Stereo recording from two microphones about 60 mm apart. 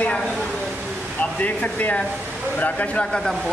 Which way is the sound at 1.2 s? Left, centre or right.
Left.